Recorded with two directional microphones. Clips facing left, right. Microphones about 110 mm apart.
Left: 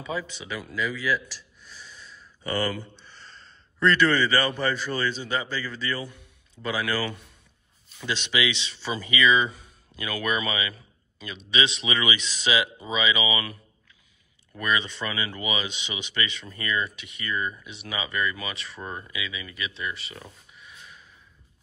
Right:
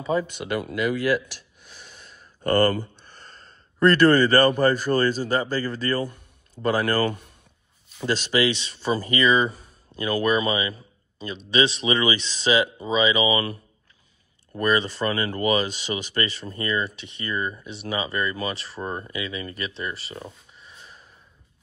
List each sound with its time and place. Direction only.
0.0 s speech: 45° right (ahead or behind)